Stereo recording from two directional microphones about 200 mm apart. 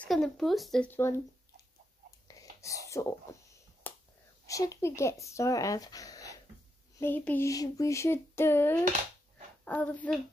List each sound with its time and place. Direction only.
0.0 s speech: centre (ahead or behind)
2.2 s whispering: 15° left (ahead or behind)
4.5 s speech: 15° left (ahead or behind)